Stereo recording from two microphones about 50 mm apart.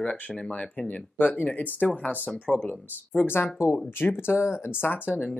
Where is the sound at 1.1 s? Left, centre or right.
Left.